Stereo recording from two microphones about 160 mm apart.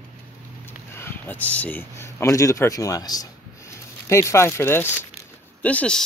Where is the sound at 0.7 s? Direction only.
15° left (ahead or behind).